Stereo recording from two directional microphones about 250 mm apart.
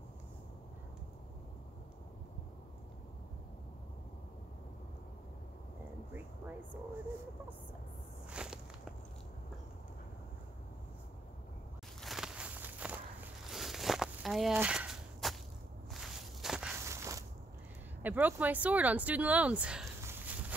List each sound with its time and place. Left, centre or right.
8.3 s walk: centre
12.0 s walk: centre
18.0 s speech: centre